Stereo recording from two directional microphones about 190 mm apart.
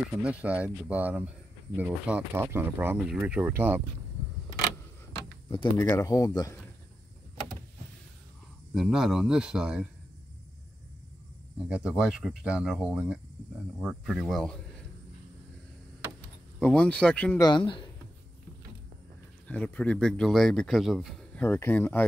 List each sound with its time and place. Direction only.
0.2 s speech: 5° right (ahead or behind)
5.5 s speech: 25° left (ahead or behind)
8.7 s speech: 5° right (ahead or behind)
11.7 s speech: 5° right (ahead or behind)
16.5 s speech: 5° left (ahead or behind)
17.4 s speech: 25° left (ahead or behind)
19.4 s speech: 5° left (ahead or behind)
21.4 s speech: 10° left (ahead or behind)